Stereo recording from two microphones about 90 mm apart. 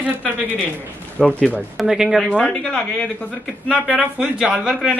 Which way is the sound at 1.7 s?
5° right (ahead or behind).